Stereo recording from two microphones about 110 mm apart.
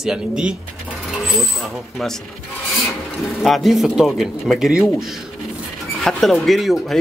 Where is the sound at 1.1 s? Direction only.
Centre (ahead or behind).